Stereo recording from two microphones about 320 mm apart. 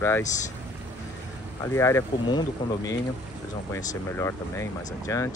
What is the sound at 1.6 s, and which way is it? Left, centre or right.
Speech, centre.